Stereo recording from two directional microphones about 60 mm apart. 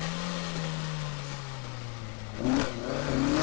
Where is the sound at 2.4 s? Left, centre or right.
Left.